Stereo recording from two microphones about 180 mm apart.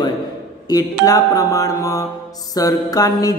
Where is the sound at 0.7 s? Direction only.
20° left (ahead or behind).